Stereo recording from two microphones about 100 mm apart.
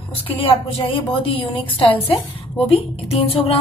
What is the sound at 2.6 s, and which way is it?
Speech, 75° left (ahead or behind).